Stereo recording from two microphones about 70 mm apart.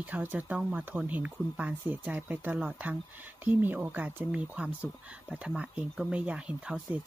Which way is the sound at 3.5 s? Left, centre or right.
Right.